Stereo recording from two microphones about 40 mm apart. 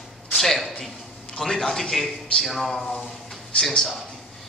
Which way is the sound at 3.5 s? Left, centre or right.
Left.